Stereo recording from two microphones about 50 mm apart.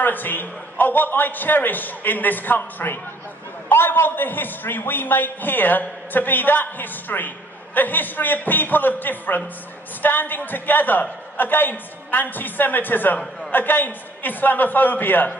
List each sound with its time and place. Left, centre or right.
0.0 s a man's voice: left